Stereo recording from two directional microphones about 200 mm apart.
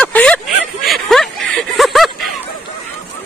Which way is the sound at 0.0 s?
5° left (ahead or behind).